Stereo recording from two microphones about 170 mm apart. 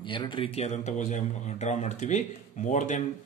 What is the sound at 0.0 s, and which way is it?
A man's voice, 30° left (ahead or behind).